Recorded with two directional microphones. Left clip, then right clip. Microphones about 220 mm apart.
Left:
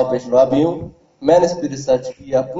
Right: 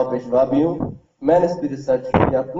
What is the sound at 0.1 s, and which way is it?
A man's voice, 40° left (ahead or behind).